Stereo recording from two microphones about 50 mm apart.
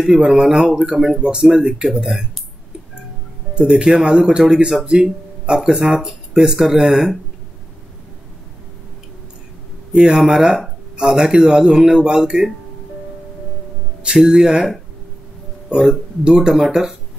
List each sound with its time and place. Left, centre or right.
0.3 s speech: centre
3.5 s speech: centre
9.9 s speech: centre
14.0 s speech: centre
15.7 s speech: centre